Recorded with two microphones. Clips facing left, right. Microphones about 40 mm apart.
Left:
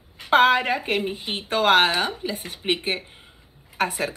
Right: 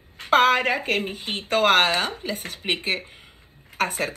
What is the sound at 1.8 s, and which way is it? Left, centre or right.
Speech, left.